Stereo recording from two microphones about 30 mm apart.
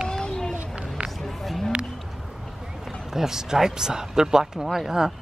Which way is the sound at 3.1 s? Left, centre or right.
Centre.